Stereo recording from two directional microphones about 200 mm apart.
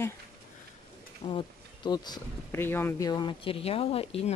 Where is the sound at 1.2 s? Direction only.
35° left (ahead or behind).